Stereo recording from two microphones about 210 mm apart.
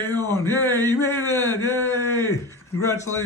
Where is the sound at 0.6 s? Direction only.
10° left (ahead or behind).